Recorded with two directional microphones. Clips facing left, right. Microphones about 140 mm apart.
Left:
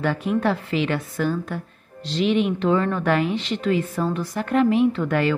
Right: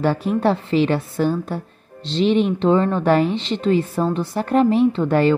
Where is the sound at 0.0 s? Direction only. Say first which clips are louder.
Right 3 dB; 35° right (ahead or behind).